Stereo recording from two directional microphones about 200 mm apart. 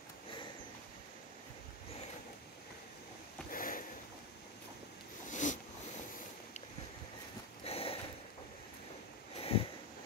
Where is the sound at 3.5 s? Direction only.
45° left (ahead or behind).